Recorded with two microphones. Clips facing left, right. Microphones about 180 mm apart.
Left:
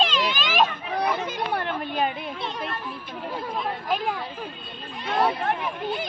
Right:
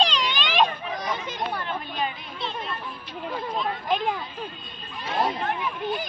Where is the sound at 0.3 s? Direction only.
5° left (ahead or behind).